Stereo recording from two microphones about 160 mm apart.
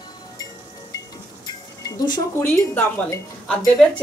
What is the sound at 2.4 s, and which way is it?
Speech, 15° left (ahead or behind).